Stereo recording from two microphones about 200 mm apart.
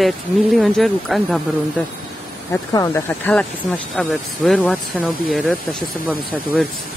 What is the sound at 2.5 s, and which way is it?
Speech, 15° left (ahead or behind).